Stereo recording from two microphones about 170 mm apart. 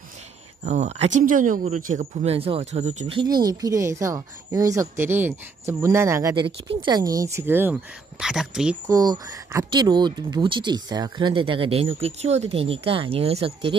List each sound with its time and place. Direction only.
0.7 s speech: 40° right (ahead or behind)
2.2 s speech: 35° right (ahead or behind)
3.4 s speech: 20° right (ahead or behind); by 8.7 s 5° right (ahead or behind)
8.8 s speech: 20° right (ahead or behind)